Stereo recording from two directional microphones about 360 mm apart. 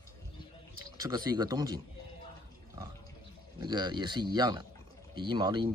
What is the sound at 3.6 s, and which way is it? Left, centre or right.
Speech, centre.